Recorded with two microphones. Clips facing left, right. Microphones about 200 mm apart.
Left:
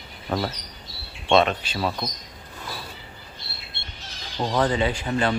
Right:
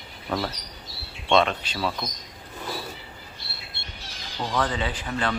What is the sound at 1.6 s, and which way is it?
Speech, 5° left (ahead or behind).